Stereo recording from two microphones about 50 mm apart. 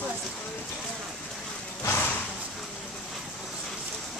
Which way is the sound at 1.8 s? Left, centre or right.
Left.